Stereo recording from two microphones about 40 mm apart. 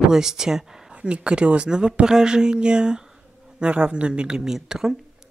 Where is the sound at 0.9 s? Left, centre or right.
Right.